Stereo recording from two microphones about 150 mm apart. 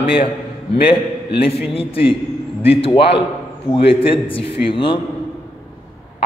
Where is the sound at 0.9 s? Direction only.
35° left (ahead or behind).